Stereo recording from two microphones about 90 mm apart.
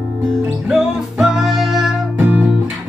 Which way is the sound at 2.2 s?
20° right (ahead or behind).